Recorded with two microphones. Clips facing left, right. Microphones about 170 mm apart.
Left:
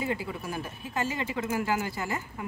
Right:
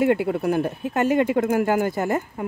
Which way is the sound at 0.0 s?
65° right (ahead or behind).